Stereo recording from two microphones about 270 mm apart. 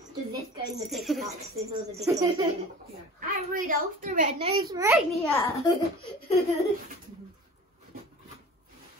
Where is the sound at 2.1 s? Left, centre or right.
Centre.